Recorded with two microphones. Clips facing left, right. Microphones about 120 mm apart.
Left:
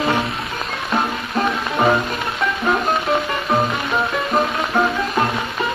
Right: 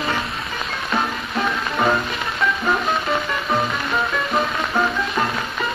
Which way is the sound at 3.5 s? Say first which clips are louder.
Left 3 dB; 10° left (ahead or behind).